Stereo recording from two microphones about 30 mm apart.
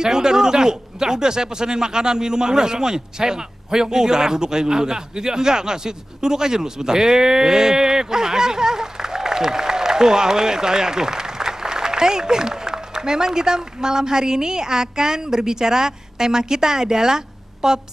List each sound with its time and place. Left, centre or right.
0.0 s speech: right